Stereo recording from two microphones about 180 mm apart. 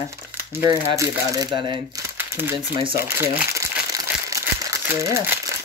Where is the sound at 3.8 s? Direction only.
20° right (ahead or behind).